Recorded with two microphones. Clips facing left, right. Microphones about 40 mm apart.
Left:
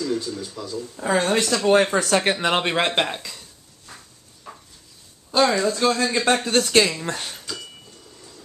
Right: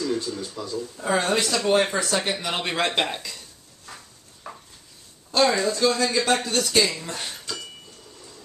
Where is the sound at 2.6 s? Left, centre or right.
Left.